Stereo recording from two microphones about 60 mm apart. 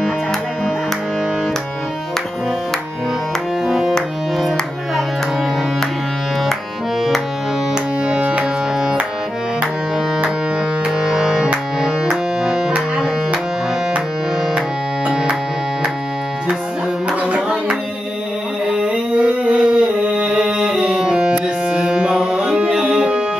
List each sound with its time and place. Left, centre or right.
3.6 s music: centre
8.1 s tabla: centre
11.0 s music: centre
17.3 s clapping: right
18.7 s music: centre